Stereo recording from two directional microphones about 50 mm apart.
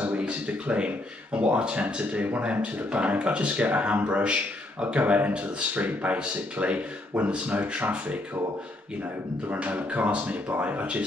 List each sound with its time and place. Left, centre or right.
0.2 s speech: right
9.5 s speech: right